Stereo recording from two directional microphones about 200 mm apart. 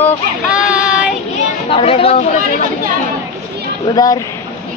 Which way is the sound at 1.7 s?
30° left (ahead or behind).